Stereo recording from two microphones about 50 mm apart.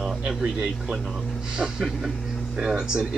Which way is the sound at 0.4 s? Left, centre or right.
Centre.